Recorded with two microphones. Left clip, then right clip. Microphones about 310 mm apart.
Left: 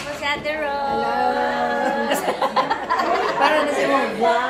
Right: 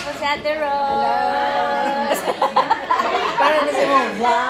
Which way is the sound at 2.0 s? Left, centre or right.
Centre.